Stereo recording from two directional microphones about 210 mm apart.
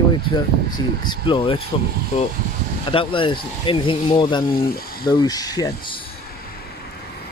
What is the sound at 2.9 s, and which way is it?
Speech, 25° left (ahead or behind).